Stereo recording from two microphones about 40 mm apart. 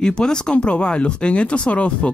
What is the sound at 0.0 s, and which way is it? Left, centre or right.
Speech, centre.